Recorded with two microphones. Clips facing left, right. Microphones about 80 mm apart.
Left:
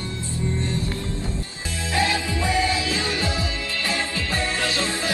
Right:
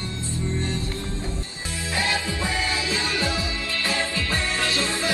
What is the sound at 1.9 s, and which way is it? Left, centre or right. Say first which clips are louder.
Music: left 3 dB; left.